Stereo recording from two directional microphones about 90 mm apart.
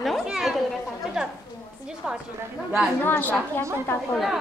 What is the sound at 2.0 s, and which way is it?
Speech, 10° right (ahead or behind).